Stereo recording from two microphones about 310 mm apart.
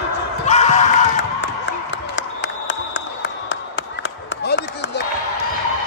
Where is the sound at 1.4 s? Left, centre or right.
Left.